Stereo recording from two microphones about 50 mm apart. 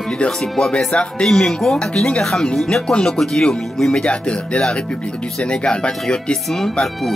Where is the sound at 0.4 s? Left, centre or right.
Centre.